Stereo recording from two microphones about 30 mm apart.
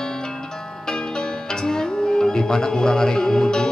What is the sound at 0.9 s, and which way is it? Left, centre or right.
Music, left.